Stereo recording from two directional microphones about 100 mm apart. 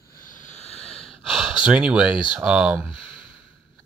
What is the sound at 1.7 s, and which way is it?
Speech, 10° right (ahead or behind).